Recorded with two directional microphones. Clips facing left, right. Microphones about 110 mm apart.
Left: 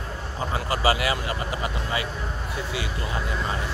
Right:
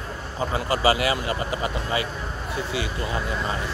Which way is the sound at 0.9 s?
30° right (ahead or behind).